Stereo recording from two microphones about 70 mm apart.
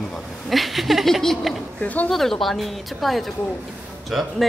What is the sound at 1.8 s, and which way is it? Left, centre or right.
Speech, left.